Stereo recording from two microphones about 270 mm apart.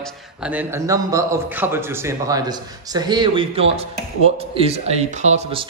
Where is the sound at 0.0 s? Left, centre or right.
Centre.